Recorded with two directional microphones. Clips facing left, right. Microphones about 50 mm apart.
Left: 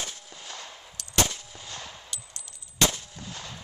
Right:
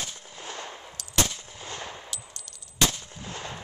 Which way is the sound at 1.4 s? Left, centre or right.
Right.